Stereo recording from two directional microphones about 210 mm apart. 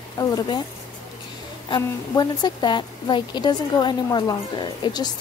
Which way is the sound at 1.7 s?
20° left (ahead or behind).